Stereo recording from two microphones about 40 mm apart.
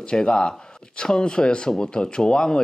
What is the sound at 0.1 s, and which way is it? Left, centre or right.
Speech, left.